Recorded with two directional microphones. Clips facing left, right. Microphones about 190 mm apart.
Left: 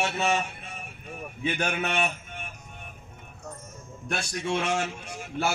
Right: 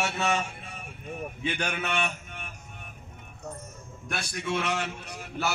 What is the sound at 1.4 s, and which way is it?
Speech, 40° left (ahead or behind).